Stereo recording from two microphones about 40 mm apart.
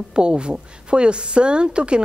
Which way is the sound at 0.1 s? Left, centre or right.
Right.